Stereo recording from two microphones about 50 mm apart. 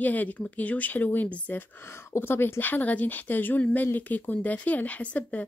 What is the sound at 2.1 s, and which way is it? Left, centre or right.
Speech, left.